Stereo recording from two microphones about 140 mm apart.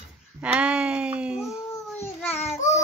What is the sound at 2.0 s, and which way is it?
Babbling, 15° left (ahead or behind).